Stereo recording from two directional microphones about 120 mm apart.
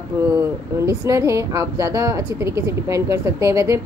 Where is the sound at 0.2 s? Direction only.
25° right (ahead or behind).